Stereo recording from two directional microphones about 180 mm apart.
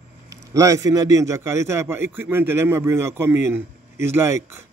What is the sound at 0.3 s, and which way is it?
Speech, 20° right (ahead or behind).